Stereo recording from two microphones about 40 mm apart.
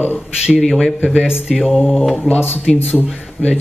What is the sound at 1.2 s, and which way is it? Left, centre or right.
Speech, right.